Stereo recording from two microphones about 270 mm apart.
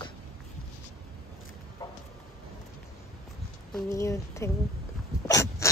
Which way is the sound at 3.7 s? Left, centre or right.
Centre.